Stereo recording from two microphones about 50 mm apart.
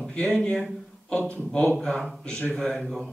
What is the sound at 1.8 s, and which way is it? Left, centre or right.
Speech, centre.